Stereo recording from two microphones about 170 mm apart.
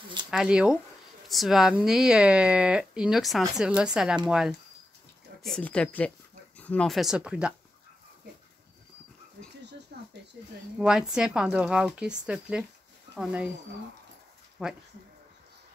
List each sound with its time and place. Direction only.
0.3 s speech: 5° right (ahead or behind)
9.9 s a sound: 65° right (ahead or behind)
10.8 s speech: 5° right (ahead or behind)
14.6 s speech: 5° right (ahead or behind)